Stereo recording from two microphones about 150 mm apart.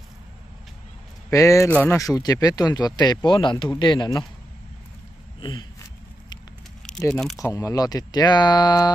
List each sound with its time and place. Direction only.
1.3 s speech: 20° left (ahead or behind)
1.7 s speech: 10° left (ahead or behind)
2.0 s speech: 25° left (ahead or behind)
5.4 s a sound: 30° left (ahead or behind)
7.1 s speech: 5° left (ahead or behind)
7.3 s speech: 20° left (ahead or behind)